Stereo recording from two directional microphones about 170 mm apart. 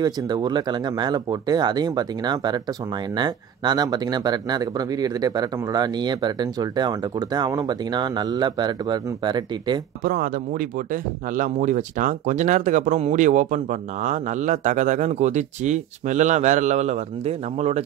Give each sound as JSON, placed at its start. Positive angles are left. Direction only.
{"t": 0.0, "sound": "speech", "side_deg": -25}
{"t": 10.0, "sound": "speech", "side_deg": -55}